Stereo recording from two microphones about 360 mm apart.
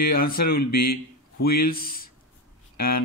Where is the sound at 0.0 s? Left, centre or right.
Left.